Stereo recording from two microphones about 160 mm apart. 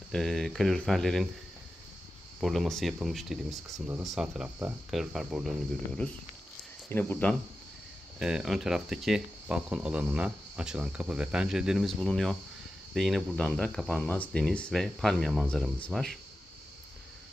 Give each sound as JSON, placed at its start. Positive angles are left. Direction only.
{"t": 0.1, "sound": "speech", "side_deg": 5}
{"t": 2.4, "sound": "speech", "side_deg": 0}
{"t": 3.8, "sound": "speech", "side_deg": -15}
{"t": 4.1, "sound": "speech", "side_deg": -5}
{"t": 6.9, "sound": "speech", "side_deg": 10}
{"t": 8.2, "sound": "speech", "side_deg": -5}